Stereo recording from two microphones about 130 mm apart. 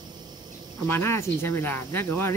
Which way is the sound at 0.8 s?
20° left (ahead or behind).